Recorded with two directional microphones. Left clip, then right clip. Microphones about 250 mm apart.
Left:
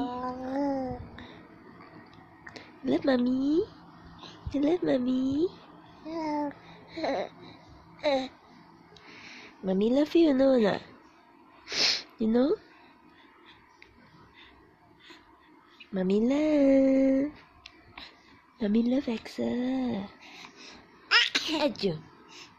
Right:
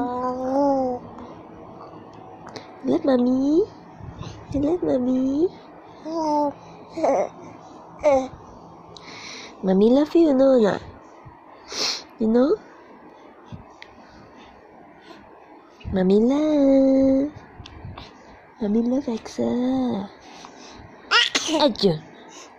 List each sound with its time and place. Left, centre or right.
0.5 s babbling: centre
2.5 s a sound: centre
3.4 s a woman's voice: centre
6.0 s babbling: centre
9.0 s a sound: centre
9.8 s speech: centre
10.3 s speech: centre
11.7 s sniff: centre
15.9 s speech: centre
16.4 s speech: centre
18.6 s speech: centre
20.3 s sneeze: centre